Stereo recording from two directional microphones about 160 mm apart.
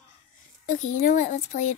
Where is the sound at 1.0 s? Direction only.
50° left (ahead or behind).